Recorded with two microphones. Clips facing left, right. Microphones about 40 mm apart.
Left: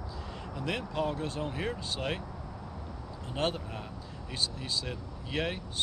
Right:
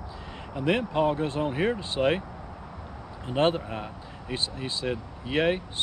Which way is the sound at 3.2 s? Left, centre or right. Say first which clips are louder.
Right 8 dB; right.